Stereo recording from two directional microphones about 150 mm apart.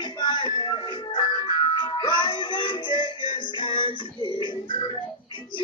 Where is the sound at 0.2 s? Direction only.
30° left (ahead or behind).